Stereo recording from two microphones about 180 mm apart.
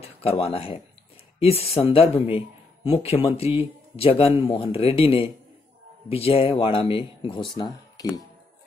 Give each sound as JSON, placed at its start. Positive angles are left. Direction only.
{"t": 0.0, "sound": "speech", "side_deg": 35}